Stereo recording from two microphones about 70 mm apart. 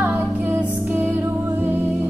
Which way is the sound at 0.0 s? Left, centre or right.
Right.